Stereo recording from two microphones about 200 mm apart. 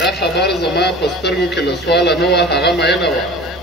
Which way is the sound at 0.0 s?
55° left (ahead or behind).